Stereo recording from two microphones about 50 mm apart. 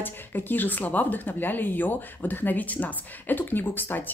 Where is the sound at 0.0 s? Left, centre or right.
Left.